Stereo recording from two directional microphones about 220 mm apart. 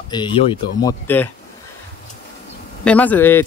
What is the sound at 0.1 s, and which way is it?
Speech, 20° left (ahead or behind).